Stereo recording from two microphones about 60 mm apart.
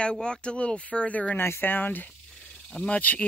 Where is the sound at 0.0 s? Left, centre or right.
Centre.